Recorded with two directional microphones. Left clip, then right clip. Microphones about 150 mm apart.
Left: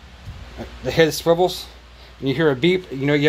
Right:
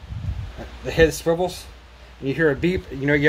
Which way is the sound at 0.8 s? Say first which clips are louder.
Left 1 dB; 45° left (ahead or behind).